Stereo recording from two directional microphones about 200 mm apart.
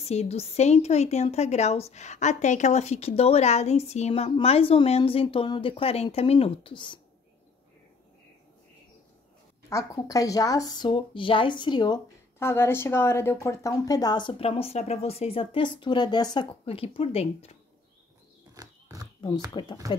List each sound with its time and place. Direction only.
0.0 s a woman's voice: 30° left (ahead or behind)
9.7 s speech: 15° left (ahead or behind); by 17.6 s 30° left (ahead or behind)
18.5 s a sound: 15° right (ahead or behind)
19.5 s speech: 25° left (ahead or behind)